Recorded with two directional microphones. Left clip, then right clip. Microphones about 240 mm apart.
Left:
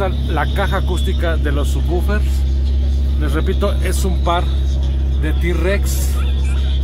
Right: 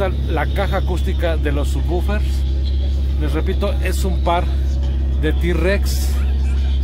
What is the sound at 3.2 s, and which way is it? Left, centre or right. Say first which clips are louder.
Speech: left 2 dB; centre.